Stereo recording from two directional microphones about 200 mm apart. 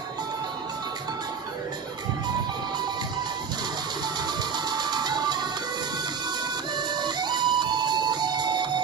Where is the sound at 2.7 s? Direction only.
20° right (ahead or behind).